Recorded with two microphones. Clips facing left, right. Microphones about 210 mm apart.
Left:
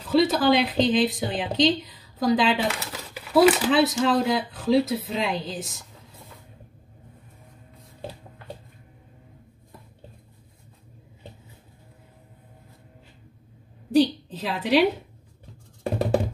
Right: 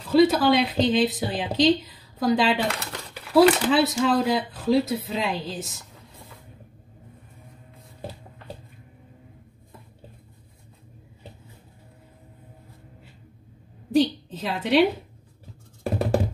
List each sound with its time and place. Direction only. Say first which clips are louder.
0.1 s a woman's voice: right 2 dB; centre (ahead or behind)
13.9 s a sound: left 1 dB; centre (ahead or behind)
15.8 s music: left 1 dB; centre (ahead or behind)